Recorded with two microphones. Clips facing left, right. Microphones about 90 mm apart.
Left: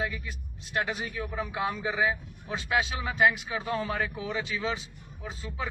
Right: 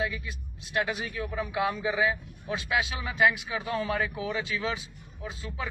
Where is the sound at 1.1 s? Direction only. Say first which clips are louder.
Right 2 dB; 35° left (ahead or behind).